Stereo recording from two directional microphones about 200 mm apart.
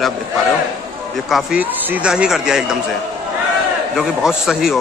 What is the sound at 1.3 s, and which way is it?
A man's voice, 5° right (ahead or behind).